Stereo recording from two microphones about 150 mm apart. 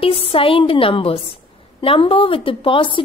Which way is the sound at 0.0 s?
40° left (ahead or behind).